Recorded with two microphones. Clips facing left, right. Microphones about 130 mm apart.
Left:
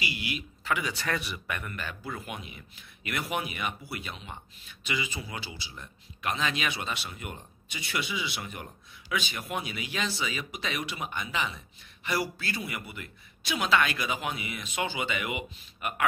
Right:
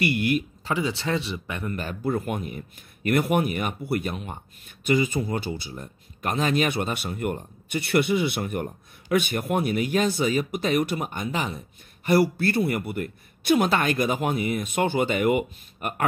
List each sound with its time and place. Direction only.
0.0 s speech: 55° right (ahead or behind)
0.7 s speech: 30° right (ahead or behind)
1.7 s speech: 40° right (ahead or behind)